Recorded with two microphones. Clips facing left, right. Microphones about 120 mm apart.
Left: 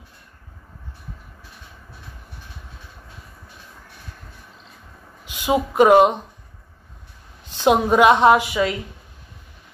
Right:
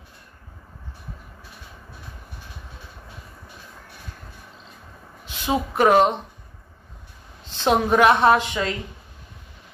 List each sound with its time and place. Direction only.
5.2 s speech: 15° left (ahead or behind)
7.5 s a woman's voice: 15° left (ahead or behind)